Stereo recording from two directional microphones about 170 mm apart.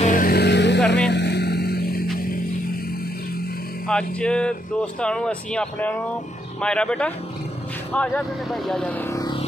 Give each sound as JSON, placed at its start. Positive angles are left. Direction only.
{"t": 0.0, "sound": "vehicle", "side_deg": 50}
{"t": 3.8, "sound": "speech", "side_deg": 5}
{"t": 9.1, "sound": "a sound", "side_deg": 25}